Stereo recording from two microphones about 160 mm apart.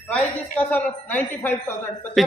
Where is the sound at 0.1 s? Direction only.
10° left (ahead or behind).